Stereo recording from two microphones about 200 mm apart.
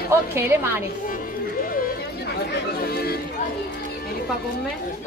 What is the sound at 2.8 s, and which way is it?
Chatter, 50° left (ahead or behind).